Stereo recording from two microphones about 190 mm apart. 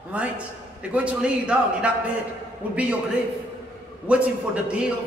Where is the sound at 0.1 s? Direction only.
5° right (ahead or behind).